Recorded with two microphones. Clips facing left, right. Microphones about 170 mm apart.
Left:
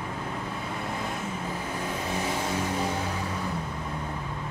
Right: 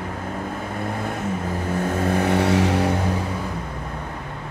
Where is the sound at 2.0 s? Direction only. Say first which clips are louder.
Right 11 dB; 60° right (ahead or behind); by 2.9 s 75° right (ahead or behind).